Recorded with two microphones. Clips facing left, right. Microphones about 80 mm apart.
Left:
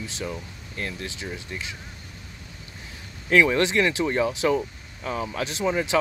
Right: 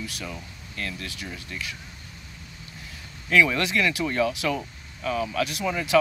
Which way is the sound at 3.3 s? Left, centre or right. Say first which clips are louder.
Left 2 dB; left.